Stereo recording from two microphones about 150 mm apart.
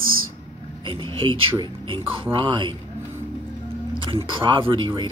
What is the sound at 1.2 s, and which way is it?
Speech, 35° right (ahead or behind).